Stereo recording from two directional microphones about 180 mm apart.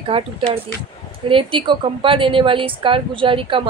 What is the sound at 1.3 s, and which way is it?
A woman's voice, 30° right (ahead or behind).